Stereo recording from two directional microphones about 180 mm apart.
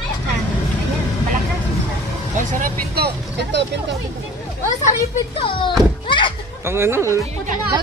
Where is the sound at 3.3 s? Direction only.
70° right (ahead or behind).